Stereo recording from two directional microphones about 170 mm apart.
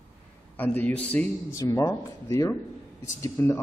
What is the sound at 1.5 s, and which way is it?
A man's voice, 20° left (ahead or behind).